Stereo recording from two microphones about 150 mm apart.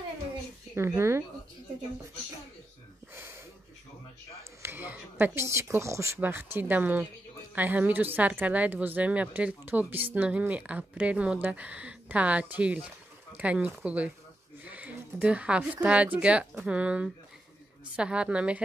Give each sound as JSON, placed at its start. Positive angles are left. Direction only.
{"t": 0.7, "sound": "a woman's voice", "side_deg": -15}
{"t": 4.6, "sound": "a woman's voice", "side_deg": -15}